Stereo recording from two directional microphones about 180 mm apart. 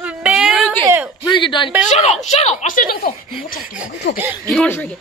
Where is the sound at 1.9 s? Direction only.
35° left (ahead or behind).